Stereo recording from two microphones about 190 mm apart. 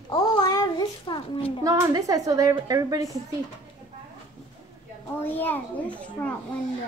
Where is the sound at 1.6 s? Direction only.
20° right (ahead or behind).